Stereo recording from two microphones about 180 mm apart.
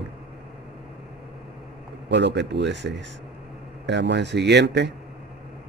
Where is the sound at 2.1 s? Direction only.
75° right (ahead or behind).